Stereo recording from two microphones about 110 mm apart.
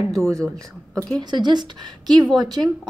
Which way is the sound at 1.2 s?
40° right (ahead or behind).